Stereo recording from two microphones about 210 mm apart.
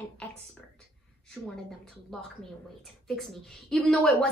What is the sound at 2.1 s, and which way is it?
A woman's voice, centre (ahead or behind).